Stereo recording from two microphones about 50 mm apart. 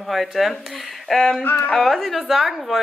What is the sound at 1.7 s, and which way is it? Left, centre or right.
Speech, centre.